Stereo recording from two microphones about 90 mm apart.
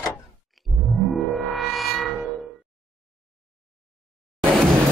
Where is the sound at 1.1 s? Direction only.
Centre (ahead or behind).